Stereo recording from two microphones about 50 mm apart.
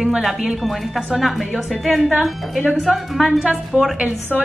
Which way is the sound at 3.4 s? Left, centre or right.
Centre.